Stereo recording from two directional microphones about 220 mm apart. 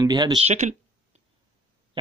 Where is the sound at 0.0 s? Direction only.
20° right (ahead or behind).